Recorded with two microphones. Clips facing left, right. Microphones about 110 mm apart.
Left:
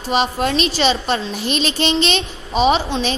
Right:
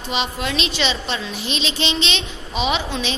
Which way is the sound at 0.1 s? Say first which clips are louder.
Left 6 dB; 45° left (ahead or behind).